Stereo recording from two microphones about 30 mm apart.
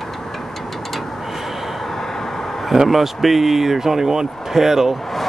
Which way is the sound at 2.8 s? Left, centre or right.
Centre.